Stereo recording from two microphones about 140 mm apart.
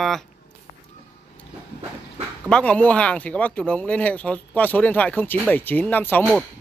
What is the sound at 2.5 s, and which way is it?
Speech, 10° left (ahead or behind).